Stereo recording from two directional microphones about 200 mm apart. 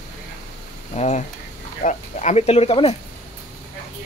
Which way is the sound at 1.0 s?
35° left (ahead or behind).